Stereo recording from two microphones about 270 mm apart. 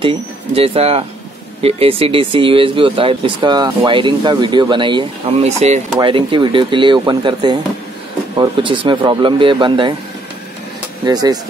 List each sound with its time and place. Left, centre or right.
0.6 s speech: right
11.1 s speech: centre